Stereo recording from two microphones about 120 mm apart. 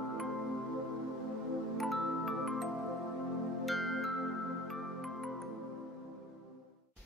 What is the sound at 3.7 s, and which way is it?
Music, centre (ahead or behind).